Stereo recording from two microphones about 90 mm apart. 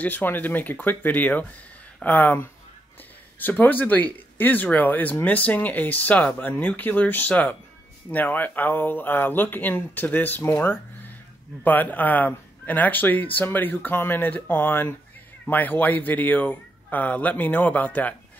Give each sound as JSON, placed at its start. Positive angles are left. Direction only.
{"t": 0.0, "sound": "a man's voice", "side_deg": 20}